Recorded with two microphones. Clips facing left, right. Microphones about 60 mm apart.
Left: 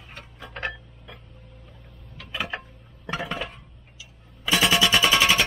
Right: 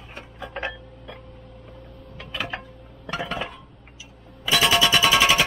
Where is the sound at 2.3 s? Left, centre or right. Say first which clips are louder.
Even; centre.